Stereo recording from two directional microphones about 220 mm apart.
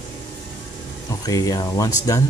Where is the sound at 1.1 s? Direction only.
15° left (ahead or behind).